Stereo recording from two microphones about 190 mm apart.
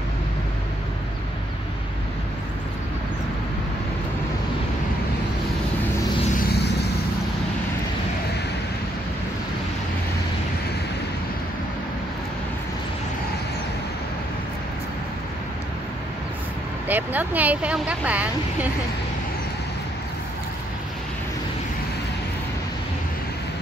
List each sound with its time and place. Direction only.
6.5 s vehicle: 60° left (ahead or behind)
16.8 s speech: 10° right (ahead or behind)